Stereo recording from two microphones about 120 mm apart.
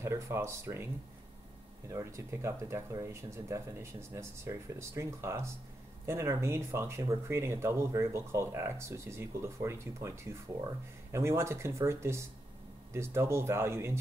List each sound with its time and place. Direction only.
0.0 s speech: 20° right (ahead or behind)
1.9 s speech: 25° right (ahead or behind)